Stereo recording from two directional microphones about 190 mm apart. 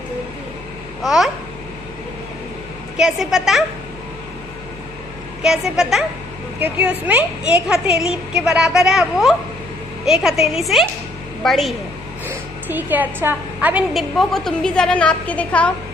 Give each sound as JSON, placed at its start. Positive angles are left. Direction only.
{"t": 1.0, "sound": "a woman's voice", "side_deg": 0}
{"t": 3.0, "sound": "a woman's voice", "side_deg": 0}
{"t": 5.4, "sound": "a woman's voice", "side_deg": -5}
{"t": 7.1, "sound": "a woman's voice", "side_deg": -10}
{"t": 12.3, "sound": "a woman's voice", "side_deg": -10}